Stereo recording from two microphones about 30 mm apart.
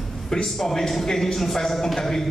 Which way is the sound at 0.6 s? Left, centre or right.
Centre.